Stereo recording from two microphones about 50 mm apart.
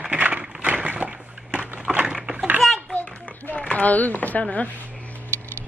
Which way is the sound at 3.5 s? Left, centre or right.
Left.